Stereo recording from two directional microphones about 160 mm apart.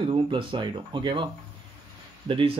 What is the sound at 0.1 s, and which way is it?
Speech, 30° right (ahead or behind).